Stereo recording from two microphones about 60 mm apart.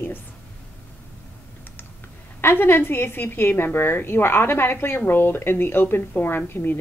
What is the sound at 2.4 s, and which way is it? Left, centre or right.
A woman's voice, left.